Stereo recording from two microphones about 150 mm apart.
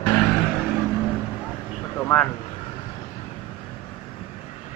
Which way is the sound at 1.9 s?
15° left (ahead or behind).